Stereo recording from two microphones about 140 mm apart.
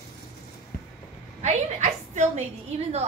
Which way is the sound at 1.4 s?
55° right (ahead or behind).